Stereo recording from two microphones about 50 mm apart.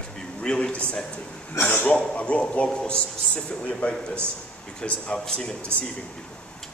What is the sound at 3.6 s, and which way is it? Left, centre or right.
A man's voice, left.